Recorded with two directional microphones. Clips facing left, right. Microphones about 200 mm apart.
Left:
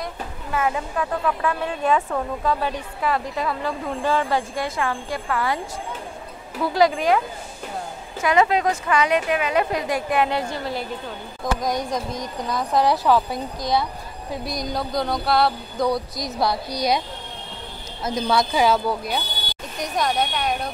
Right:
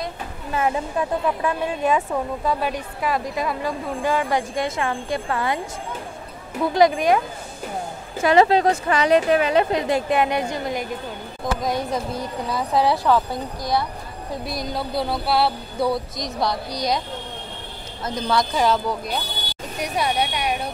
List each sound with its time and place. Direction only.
0.5 s a woman's voice: 25° right (ahead or behind)
6.7 s a woman's voice: 20° right (ahead or behind)
8.2 s a woman's voice: 30° right (ahead or behind); by 10.9 s 15° right (ahead or behind)
11.6 s music: 5° right (ahead or behind); by 17.0 s 10° left (ahead or behind)
18.0 s speech: 10° left (ahead or behind)
19.8 s speech: 10° right (ahead or behind)